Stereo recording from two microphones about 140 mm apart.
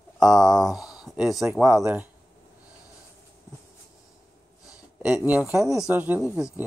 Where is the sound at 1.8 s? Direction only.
10° right (ahead or behind).